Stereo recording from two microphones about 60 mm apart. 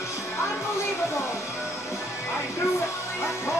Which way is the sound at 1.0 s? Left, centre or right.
Left.